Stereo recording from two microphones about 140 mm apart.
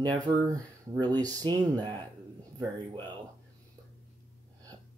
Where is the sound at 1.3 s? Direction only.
30° right (ahead or behind).